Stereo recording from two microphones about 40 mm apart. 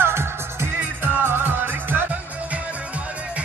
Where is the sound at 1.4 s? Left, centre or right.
Right.